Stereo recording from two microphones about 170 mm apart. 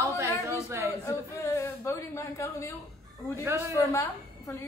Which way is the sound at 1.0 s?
20° left (ahead or behind).